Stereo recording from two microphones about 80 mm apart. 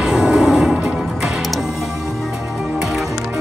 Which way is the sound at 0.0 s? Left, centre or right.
Centre.